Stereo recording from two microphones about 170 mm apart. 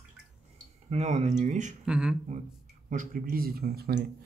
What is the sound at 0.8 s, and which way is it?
Speech, 40° right (ahead or behind).